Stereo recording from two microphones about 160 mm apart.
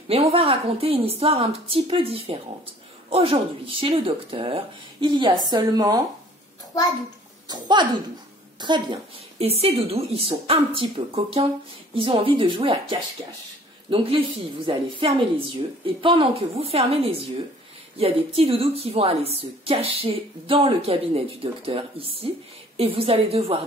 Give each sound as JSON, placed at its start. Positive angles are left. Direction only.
{"t": 0.1, "sound": "a woman's voice", "side_deg": -35}
{"t": 7.4, "sound": "speech", "side_deg": -25}
{"t": 9.4, "sound": "a woman's voice", "side_deg": -40}